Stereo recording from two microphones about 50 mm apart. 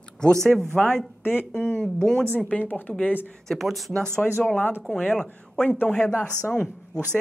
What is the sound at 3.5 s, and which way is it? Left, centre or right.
Speech, centre.